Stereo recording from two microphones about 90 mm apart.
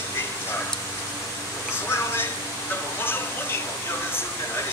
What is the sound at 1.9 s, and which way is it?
Speech, 25° left (ahead or behind).